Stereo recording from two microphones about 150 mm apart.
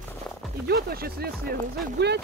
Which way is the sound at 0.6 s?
90° right.